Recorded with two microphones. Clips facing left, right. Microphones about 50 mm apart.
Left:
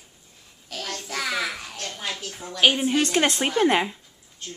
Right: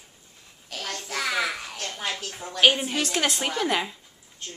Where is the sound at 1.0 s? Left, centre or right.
Centre.